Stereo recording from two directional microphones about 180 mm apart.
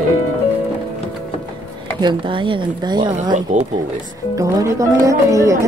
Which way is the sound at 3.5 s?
45° right (ahead or behind).